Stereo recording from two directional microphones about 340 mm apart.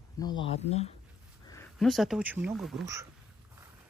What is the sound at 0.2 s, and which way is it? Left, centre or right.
Speech, centre.